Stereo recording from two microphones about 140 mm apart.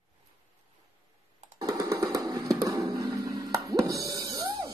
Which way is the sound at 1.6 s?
25° right (ahead or behind).